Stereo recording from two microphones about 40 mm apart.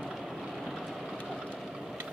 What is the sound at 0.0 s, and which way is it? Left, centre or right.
Vehicle, centre.